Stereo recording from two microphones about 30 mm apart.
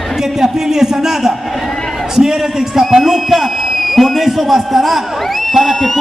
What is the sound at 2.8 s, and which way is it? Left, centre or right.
A man's voice, centre.